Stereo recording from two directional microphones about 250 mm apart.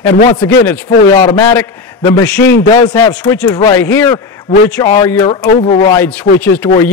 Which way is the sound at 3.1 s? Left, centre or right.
Centre.